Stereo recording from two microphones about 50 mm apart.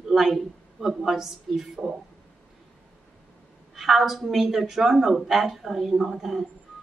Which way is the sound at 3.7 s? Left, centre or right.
Centre.